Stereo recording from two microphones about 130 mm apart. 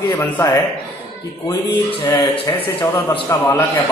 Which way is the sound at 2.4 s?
20° left (ahead or behind).